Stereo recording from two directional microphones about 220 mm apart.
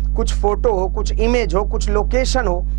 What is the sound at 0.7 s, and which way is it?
Music, 25° right (ahead or behind).